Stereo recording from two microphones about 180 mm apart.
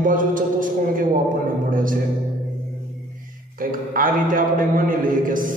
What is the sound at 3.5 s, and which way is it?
A man's voice, 50° right (ahead or behind).